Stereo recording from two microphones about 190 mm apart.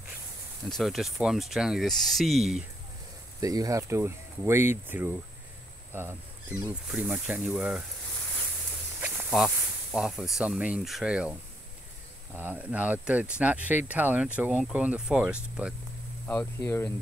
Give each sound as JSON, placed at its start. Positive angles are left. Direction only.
{"t": 0.7, "sound": "speech", "side_deg": 0}
{"t": 3.3, "sound": "speech", "side_deg": -20}
{"t": 9.0, "sound": "speech", "side_deg": 0}
{"t": 12.4, "sound": "speech", "side_deg": -10}
{"t": 16.3, "sound": "speech", "side_deg": 10}